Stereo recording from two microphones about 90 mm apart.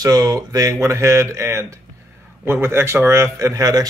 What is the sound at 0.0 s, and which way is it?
Speech, 45° right (ahead or behind).